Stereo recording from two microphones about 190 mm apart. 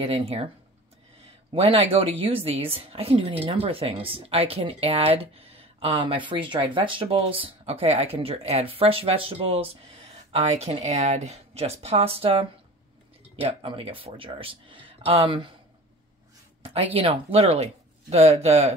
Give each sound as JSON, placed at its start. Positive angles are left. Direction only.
{"t": 0.0, "sound": "speech", "side_deg": -30}
{"t": 1.5, "sound": "a woman's voice", "side_deg": -30}
{"t": 16.6, "sound": "a woman's voice", "side_deg": -30}